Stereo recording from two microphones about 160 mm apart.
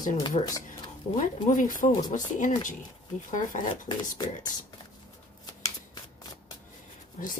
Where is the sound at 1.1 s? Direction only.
55° left (ahead or behind).